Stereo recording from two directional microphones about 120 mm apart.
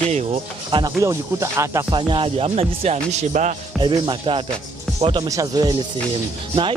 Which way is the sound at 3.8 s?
40° right (ahead or behind).